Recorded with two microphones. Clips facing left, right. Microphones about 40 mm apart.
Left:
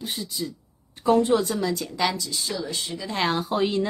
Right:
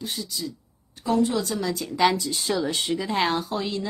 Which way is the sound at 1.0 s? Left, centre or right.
Left.